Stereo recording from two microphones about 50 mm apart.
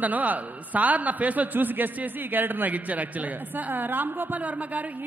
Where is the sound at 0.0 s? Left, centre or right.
Right.